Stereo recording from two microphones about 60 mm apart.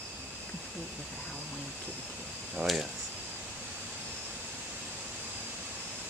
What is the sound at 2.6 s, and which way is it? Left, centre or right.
Speech, right.